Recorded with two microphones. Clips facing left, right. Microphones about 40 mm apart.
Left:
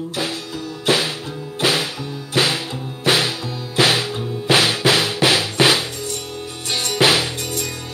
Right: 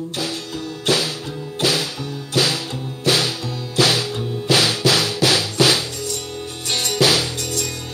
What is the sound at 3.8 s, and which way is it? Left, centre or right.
Drum kit, left.